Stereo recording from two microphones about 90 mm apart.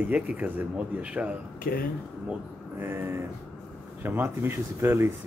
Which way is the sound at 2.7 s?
25° right (ahead or behind).